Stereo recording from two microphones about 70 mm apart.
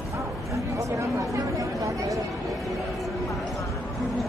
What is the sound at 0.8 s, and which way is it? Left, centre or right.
Chatter, right.